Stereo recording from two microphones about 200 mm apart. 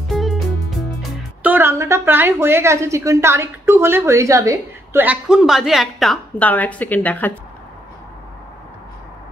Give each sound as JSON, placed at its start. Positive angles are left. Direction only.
{"t": 0.1, "sound": "music", "side_deg": 0}
{"t": 1.4, "sound": "a woman's voice", "side_deg": -10}